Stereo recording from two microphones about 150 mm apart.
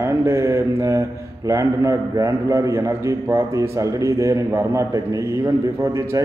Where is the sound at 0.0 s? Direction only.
15° right (ahead or behind).